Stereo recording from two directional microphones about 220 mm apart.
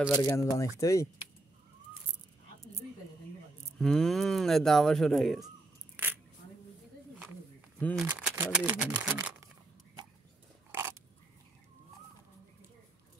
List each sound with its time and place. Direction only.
0.1 s speech: 15° left (ahead or behind)
3.7 s speech: centre (ahead or behind)
7.8 s speech: centre (ahead or behind)
9.0 s a sound: 10° right (ahead or behind)
10.7 s crow: 10° right (ahead or behind)